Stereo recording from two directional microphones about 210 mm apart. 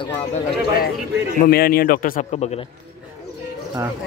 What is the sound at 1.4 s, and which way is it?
Speech, 45° left (ahead or behind).